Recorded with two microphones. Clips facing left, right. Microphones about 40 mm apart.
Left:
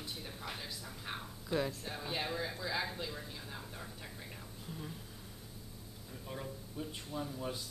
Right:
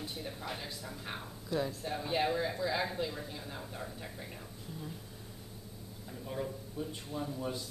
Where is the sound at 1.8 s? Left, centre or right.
Centre.